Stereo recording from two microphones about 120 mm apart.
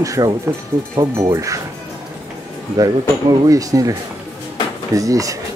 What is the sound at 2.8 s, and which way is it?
Speech, 30° right (ahead or behind).